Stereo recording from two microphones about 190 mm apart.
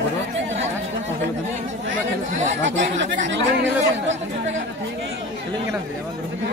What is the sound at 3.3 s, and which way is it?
Speech, 75° right (ahead or behind).